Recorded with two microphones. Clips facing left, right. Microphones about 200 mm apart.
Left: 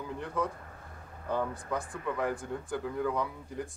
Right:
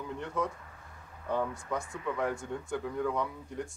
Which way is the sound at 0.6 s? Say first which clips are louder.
Left 4 dB; 45° left (ahead or behind).